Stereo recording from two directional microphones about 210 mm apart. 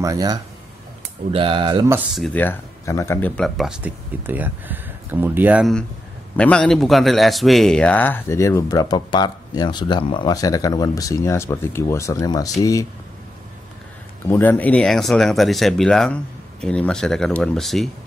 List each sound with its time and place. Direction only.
0.0 s a man's voice: 15° right (ahead or behind)
2.1 s a man's voice: 5° left (ahead or behind)
14.2 s speech: 10° left (ahead or behind)